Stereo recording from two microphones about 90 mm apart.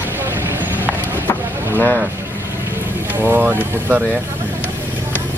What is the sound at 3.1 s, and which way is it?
Speech, 20° right (ahead or behind).